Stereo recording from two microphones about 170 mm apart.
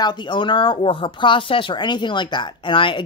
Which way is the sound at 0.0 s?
25° left (ahead or behind).